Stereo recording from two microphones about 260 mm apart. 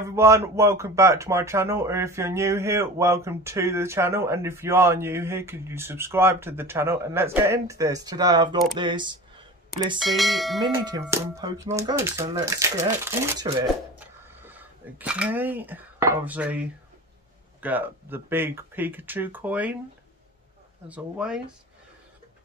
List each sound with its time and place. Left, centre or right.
0.0 s speech: centre
9.9 s speech: centre
10.6 s speech: centre
20.9 s speech: centre